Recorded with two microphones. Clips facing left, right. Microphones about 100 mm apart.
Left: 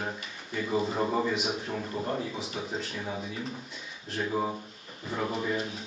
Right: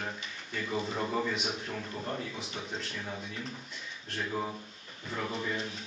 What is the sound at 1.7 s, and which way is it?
Speech, 15° left (ahead or behind).